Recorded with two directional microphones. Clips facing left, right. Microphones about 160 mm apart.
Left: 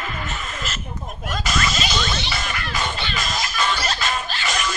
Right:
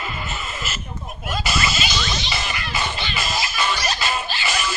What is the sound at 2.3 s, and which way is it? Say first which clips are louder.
Music: even; 5° right (ahead or behind).